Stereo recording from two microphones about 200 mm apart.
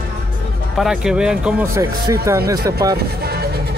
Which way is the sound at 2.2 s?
15° right (ahead or behind).